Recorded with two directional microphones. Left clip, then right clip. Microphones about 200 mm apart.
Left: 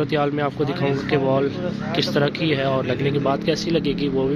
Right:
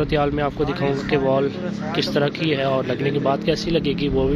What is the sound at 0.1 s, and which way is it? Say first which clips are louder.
Speech: right 1 dB; centre (ahead or behind).